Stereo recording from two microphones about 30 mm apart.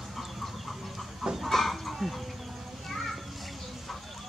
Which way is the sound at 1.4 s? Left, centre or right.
Centre.